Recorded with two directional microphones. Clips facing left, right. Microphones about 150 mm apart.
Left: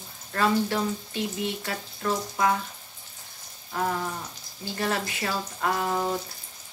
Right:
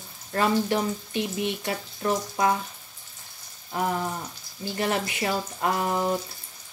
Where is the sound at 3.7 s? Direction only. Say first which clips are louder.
Right 1 dB; 15° right (ahead or behind).